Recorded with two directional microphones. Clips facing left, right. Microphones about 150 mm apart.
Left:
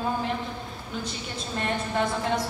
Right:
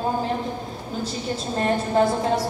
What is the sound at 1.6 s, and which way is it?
Speech, 35° right (ahead or behind).